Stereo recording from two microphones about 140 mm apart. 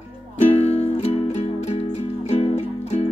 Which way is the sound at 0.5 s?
45° left (ahead or behind).